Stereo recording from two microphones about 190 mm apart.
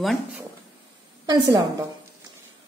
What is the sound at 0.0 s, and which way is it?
Speech, centre (ahead or behind).